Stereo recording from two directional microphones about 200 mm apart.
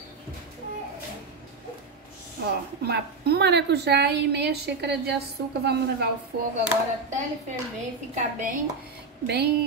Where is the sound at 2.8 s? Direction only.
55° right (ahead or behind).